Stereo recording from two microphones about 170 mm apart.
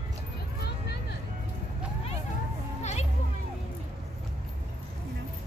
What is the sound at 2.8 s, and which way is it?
Music, 40° left (ahead or behind).